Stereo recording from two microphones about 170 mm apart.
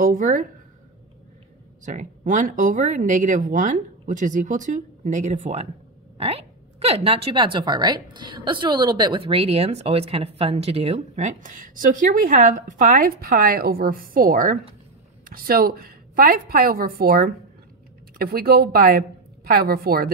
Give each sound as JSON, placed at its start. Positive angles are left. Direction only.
{"t": 0.0, "sound": "speech", "side_deg": -55}
{"t": 1.9, "sound": "a woman's voice", "side_deg": -50}